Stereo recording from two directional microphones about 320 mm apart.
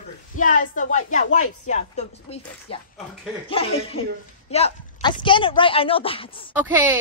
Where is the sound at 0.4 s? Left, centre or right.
Left.